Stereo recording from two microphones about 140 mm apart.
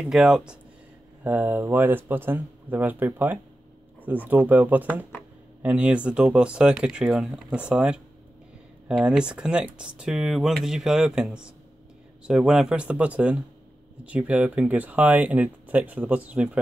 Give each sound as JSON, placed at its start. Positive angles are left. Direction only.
{"t": 0.0, "sound": "speech", "side_deg": -5}